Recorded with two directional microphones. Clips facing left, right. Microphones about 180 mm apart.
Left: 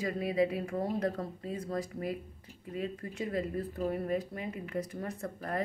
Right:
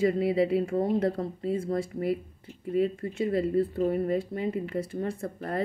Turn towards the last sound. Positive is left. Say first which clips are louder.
# right 4 dB
turn(degrees=-30)  # may be behind; listen again after turning